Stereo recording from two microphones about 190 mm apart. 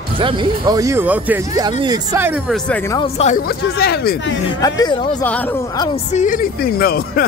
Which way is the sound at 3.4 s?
55° left (ahead or behind).